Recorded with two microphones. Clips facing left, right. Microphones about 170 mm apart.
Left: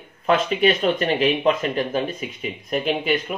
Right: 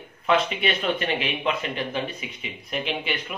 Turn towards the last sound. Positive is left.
turn(degrees=45)  # may be behind; listen again after turning